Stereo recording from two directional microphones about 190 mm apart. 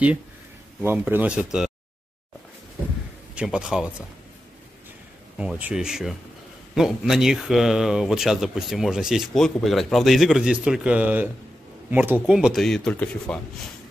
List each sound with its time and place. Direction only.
0.7 s speech: 10° right (ahead or behind)
3.3 s speech: 5° right (ahead or behind)
5.4 s speech: 5° right (ahead or behind)